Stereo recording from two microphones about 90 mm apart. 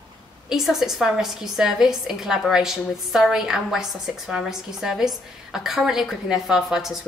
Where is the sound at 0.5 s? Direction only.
5° right (ahead or behind).